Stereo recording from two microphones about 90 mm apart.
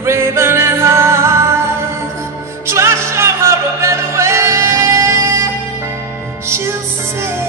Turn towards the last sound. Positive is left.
turn(degrees=-30)  # may be behind; listen again after turning